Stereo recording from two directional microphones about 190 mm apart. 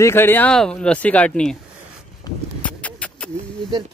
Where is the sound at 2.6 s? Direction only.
5° left (ahead or behind).